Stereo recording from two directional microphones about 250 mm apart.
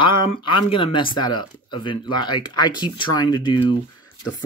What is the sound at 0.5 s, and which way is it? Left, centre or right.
Speech, centre.